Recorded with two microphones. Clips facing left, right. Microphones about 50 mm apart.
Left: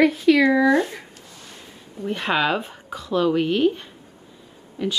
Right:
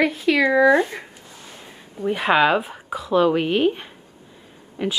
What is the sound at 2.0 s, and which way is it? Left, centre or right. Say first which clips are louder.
A woman's voice: right 4 dB; centre.